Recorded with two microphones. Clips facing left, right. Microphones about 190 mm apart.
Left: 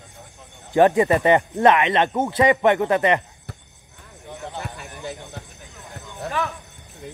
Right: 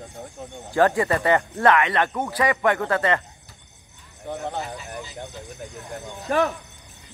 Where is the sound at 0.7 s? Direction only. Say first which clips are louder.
Left 4 dB; 20° left (ahead or behind).